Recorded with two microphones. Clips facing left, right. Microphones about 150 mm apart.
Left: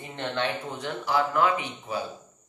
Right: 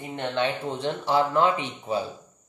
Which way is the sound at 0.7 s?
30° right (ahead or behind).